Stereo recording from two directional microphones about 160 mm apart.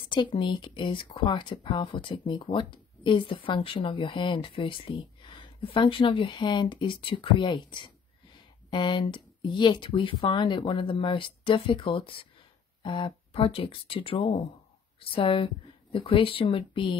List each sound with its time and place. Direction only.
0.1 s speech: 30° left (ahead or behind)